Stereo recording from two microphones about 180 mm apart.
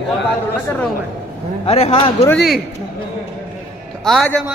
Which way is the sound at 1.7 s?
35° left (ahead or behind).